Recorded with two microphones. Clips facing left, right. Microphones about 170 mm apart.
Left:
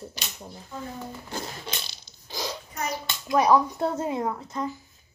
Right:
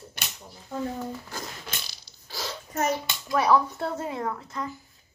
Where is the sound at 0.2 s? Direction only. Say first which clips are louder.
Even; 55° right (ahead or behind).